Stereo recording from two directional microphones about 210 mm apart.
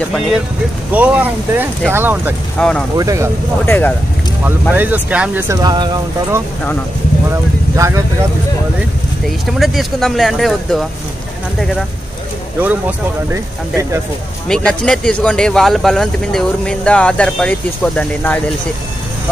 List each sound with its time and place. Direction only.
0.9 s speech: 5° right (ahead or behind)
2.6 s speech: 5° left (ahead or behind)
3.0 s speech: 15° right (ahead or behind)
3.6 s speech: 10° left (ahead or behind)
4.5 s speech: 10° right (ahead or behind)
7.7 s speech: 15° right (ahead or behind)
9.5 s speech: centre (ahead or behind)
12.5 s speech: 10° right (ahead or behind)
14.5 s speech: 5° left (ahead or behind)